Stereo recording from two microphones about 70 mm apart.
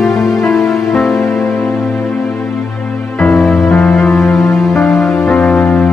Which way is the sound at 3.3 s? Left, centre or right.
Centre.